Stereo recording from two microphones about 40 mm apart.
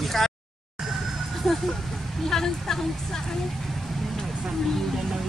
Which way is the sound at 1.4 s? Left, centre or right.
Centre.